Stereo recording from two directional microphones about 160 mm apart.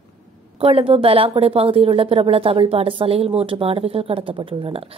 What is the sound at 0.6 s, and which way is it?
Speech, 35° right (ahead or behind).